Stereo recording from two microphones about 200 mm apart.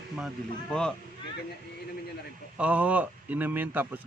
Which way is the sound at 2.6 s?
5° right (ahead or behind).